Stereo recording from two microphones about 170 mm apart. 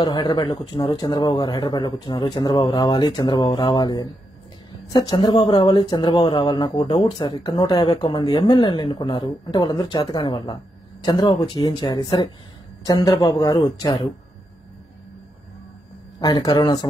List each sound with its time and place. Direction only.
0.0 s speech: 25° left (ahead or behind)
16.2 s speech: 25° left (ahead or behind)